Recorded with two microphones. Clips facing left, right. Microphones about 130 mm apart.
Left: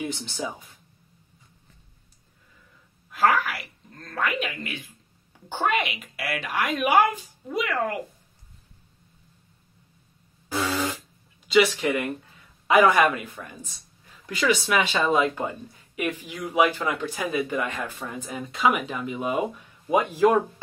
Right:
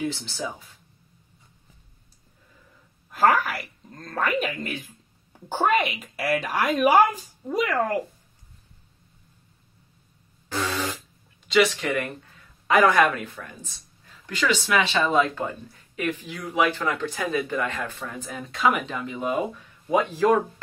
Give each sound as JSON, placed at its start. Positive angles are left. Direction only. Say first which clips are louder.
{"t": 0.0, "sound": "speech", "louder": "right 1 dB", "side_deg": 20}
{"t": 3.3, "sound": "speech", "louder": "right 2 dB", "side_deg": -40}
{"t": 10.5, "sound": "fart", "louder": "left 1 dB", "side_deg": 10}
{"t": 11.4, "sound": "speech", "louder": "left 1 dB", "side_deg": 5}